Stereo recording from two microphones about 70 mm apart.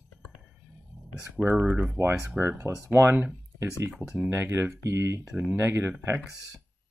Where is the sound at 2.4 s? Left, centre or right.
Right.